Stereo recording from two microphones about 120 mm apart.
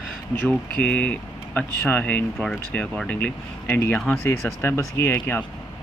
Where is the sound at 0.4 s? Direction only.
10° left (ahead or behind).